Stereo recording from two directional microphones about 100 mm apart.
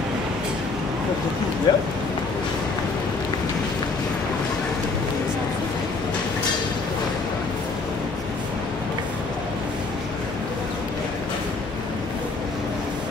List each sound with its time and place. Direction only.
1.7 s speech: 40° left (ahead or behind)